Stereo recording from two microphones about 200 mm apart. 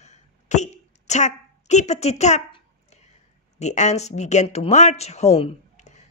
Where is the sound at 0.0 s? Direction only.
35° left (ahead or behind).